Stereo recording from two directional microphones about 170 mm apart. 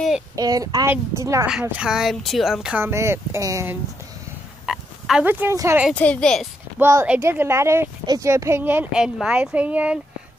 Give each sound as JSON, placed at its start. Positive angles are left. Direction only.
{"t": 0.4, "sound": "a woman's voice", "side_deg": -20}
{"t": 1.5, "sound": "speech", "side_deg": -5}
{"t": 4.6, "sound": "speech", "side_deg": -5}
{"t": 5.9, "sound": "speech", "side_deg": 5}
{"t": 6.8, "sound": "speech", "side_deg": -15}